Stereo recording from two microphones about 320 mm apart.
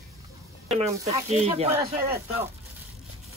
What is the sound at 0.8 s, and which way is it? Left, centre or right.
Speech, centre.